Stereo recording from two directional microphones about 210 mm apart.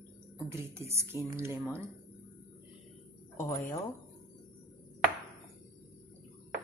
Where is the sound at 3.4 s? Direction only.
15° left (ahead or behind).